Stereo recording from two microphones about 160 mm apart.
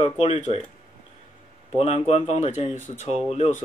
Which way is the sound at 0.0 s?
35° left (ahead or behind).